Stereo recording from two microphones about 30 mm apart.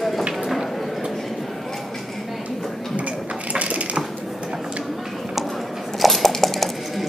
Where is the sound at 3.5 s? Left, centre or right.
Right.